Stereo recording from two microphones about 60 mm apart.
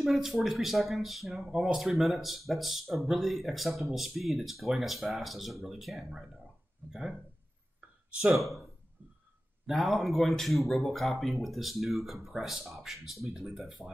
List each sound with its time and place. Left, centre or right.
0.0 s speech: centre
1.4 s speech: centre
6.0 s speech: centre
8.3 s speech: centre
9.7 s speech: centre